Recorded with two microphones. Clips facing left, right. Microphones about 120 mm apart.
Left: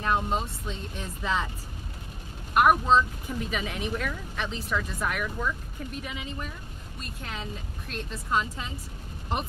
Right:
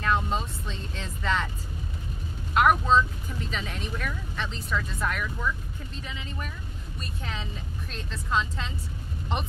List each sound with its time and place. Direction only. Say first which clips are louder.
0.0 s vehicle: even; 15° left (ahead or behind)
2.5 s speech: left 1 dB; 10° left (ahead or behind)
7.2 s speech: left 1 dB; 5° left (ahead or behind)